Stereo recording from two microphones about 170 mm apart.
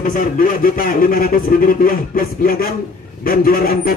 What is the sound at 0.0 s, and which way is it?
A man's voice, 55° left (ahead or behind).